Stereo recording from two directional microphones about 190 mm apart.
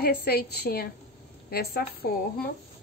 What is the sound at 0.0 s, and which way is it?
A woman's voice, 55° left (ahead or behind).